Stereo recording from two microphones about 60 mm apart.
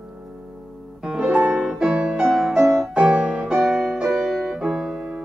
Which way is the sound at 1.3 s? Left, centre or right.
Right.